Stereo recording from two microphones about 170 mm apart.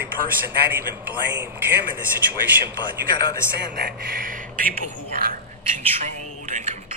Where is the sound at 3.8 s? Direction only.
60° right (ahead or behind).